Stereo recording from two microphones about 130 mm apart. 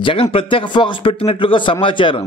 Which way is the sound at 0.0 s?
45° left (ahead or behind).